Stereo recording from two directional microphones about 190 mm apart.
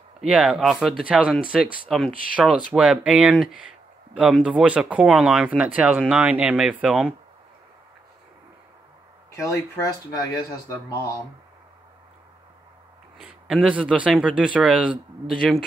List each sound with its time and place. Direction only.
0.2 s speech: 5° right (ahead or behind)
9.4 s speech: 15° left (ahead or behind)
13.2 s speech: 5° right (ahead or behind)